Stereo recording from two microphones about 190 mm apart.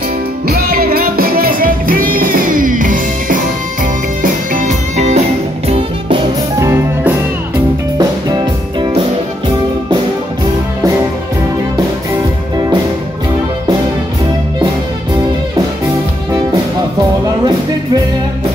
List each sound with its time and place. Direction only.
0.5 s music: 50° right (ahead or behind); by 6.2 s 25° right (ahead or behind)
6.6 s music: 10° right (ahead or behind)